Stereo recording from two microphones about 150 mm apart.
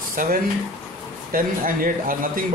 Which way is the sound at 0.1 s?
65° right (ahead or behind).